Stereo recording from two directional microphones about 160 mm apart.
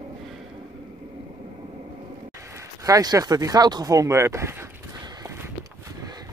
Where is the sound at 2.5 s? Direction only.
20° right (ahead or behind).